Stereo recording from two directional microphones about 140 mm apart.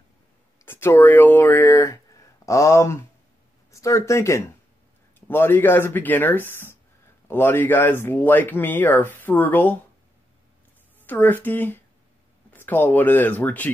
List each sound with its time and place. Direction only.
0.7 s speech: 15° left (ahead or behind)
11.0 s speech: 15° left (ahead or behind)